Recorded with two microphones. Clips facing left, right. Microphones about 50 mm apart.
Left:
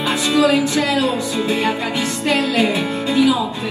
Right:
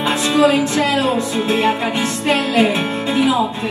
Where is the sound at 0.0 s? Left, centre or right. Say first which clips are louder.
Right 2 dB; right.